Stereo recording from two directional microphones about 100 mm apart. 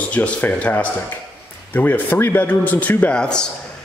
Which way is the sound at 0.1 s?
15° left (ahead or behind).